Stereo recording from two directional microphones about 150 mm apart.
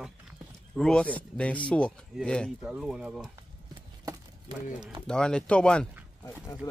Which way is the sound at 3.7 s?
25° right (ahead or behind).